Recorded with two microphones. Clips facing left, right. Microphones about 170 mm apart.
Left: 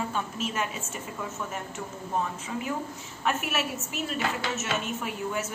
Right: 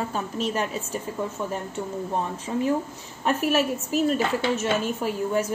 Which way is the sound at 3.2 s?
35° right (ahead or behind).